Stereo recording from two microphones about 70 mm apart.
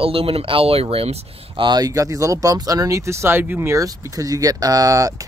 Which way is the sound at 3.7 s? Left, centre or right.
Right.